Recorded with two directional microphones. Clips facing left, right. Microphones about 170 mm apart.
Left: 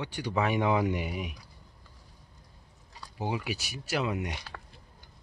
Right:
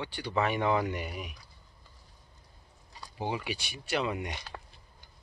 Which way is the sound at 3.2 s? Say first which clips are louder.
Left 1 dB; 5° left (ahead or behind).